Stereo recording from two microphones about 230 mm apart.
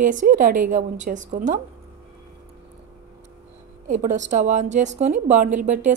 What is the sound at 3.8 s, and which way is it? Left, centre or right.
A woman's voice, right.